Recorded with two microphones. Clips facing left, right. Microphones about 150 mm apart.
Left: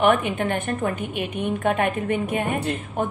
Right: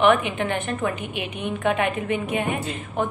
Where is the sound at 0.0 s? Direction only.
50° left (ahead or behind).